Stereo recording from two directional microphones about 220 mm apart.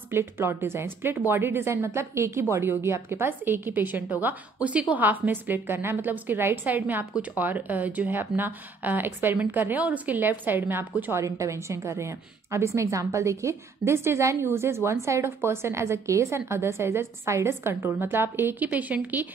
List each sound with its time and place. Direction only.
0.1 s a woman's voice: 10° right (ahead or behind)